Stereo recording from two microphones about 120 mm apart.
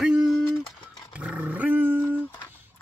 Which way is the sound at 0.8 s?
40° left (ahead or behind).